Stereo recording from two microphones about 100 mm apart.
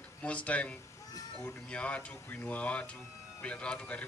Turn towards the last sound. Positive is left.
turn(degrees=10)  # may be behind; listen again after turning